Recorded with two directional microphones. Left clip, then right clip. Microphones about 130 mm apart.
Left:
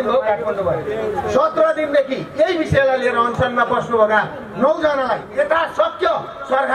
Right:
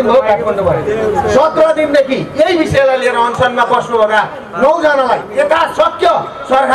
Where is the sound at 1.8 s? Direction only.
35° right (ahead or behind).